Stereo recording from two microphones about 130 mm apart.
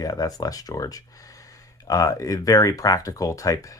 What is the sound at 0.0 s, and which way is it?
Speech, 30° left (ahead or behind).